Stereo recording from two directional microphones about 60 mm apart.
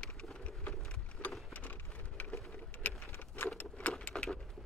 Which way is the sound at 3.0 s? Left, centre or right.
Left.